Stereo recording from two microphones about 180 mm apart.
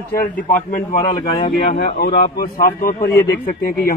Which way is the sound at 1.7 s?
65° left (ahead or behind).